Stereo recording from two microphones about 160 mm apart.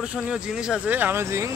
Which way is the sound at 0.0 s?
5° right (ahead or behind).